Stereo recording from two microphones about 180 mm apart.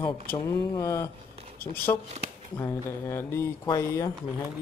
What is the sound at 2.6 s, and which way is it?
Speech, 15° left (ahead or behind).